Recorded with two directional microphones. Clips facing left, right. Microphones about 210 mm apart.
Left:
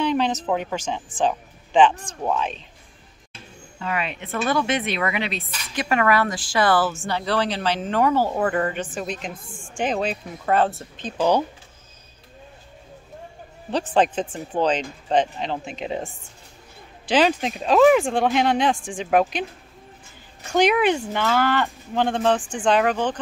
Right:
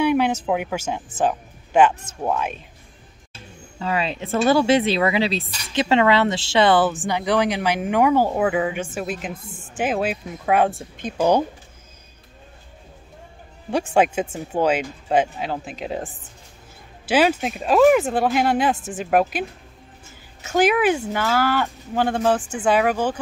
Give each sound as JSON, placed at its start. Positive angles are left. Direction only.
{"t": 0.0, "sound": "speech", "side_deg": -10}
{"t": 3.8, "sound": "speech", "side_deg": -30}
{"t": 13.7, "sound": "speech", "side_deg": -10}
{"t": 20.4, "sound": "speech", "side_deg": -5}